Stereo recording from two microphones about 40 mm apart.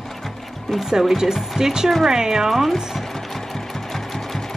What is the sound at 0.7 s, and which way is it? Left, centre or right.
Speech, centre.